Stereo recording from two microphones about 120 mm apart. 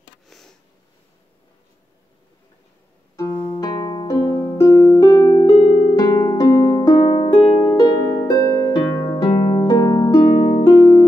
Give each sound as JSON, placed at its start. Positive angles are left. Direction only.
{"t": 0.3, "sound": "a sound", "side_deg": 0}
{"t": 3.2, "sound": "music", "side_deg": 30}
{"t": 7.1, "sound": "music", "side_deg": 50}
{"t": 7.6, "sound": "harp", "side_deg": 35}
{"t": 9.7, "sound": "harp", "side_deg": 30}
{"t": 10.4, "sound": "music", "side_deg": 35}